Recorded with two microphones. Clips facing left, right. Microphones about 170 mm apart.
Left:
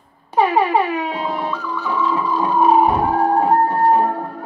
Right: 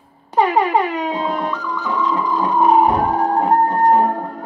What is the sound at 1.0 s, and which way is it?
Dog, 5° left (ahead or behind).